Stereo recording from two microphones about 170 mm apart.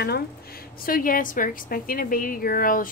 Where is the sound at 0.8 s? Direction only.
55° left (ahead or behind).